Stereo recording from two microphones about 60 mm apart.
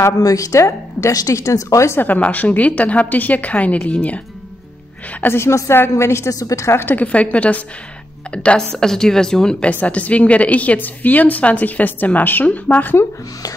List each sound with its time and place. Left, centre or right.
0.2 s a woman's voice: left
2.0 s a woman's voice: left
5.2 s a woman's voice: left
6.4 s a woman's voice: left
6.7 s a woman's voice: left
7.0 s a woman's voice: left